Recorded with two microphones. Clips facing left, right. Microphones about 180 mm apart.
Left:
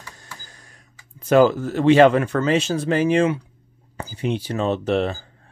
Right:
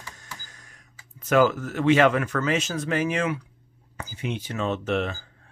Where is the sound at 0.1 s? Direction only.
35° left (ahead or behind).